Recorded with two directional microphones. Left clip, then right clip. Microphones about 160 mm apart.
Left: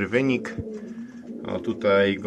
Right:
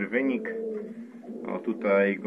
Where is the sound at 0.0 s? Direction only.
55° left (ahead or behind).